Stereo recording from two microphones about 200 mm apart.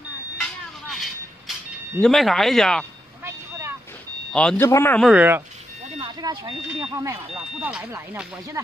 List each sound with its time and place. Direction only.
0.4 s vehicle: centre (ahead or behind)
2.0 s speech: centre (ahead or behind)
4.3 s speech: 5° left (ahead or behind)
5.0 s speech: 10° right (ahead or behind)
5.9 s speech: 25° right (ahead or behind)